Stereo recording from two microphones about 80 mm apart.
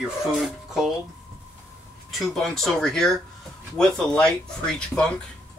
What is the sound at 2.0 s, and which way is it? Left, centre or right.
Speech, centre.